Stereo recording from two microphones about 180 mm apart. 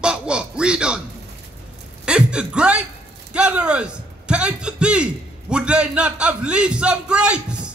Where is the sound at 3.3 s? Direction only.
5° right (ahead or behind).